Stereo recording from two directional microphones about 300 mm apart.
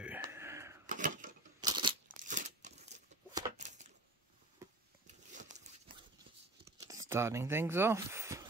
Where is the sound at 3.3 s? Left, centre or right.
Centre.